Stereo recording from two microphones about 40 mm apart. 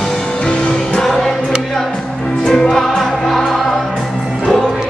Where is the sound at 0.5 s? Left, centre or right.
Left.